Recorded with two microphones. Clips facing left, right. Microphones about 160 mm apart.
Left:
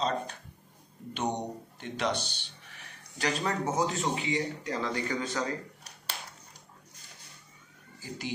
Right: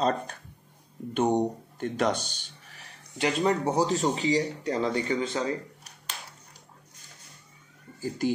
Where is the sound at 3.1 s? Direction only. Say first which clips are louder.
Right 6 dB; 25° right (ahead or behind).